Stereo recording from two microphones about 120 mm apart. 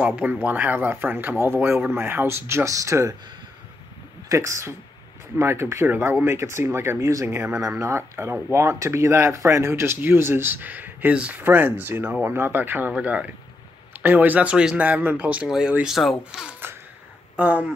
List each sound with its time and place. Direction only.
0.0 s speech: 10° right (ahead or behind)
4.3 s speech: 25° right (ahead or behind)